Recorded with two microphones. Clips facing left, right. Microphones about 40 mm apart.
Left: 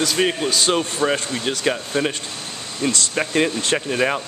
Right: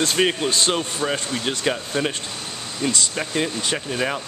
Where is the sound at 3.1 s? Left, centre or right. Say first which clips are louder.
Left 4 dB; centre.